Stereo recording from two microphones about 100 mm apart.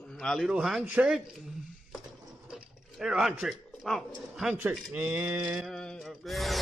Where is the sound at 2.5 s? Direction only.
5° right (ahead or behind).